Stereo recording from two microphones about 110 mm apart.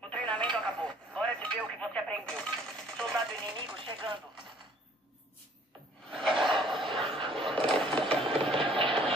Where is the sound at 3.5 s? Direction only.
50° right (ahead or behind).